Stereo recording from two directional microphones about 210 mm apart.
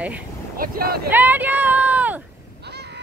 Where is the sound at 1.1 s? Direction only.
10° right (ahead or behind).